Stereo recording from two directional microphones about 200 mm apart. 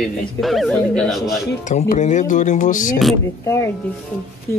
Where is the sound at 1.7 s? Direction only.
35° left (ahead or behind).